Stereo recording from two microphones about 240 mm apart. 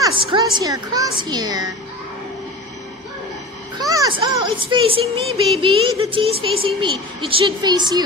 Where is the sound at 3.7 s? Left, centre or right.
Centre.